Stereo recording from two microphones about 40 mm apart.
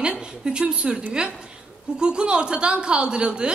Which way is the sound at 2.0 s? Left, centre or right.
Right.